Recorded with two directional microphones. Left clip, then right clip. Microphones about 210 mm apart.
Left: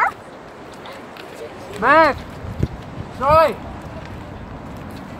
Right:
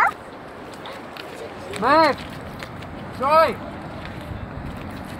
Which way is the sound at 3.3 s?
35° left (ahead or behind).